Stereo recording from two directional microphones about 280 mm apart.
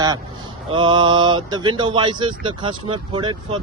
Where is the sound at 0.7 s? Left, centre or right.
Centre.